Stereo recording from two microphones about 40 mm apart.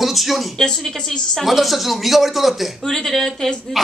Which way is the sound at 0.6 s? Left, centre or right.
Centre.